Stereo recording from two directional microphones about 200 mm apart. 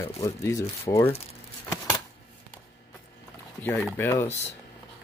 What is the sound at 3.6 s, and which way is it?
Speech, 10° left (ahead or behind).